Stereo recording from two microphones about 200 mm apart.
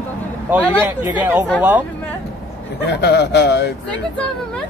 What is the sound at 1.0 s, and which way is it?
Speech, 10° right (ahead or behind).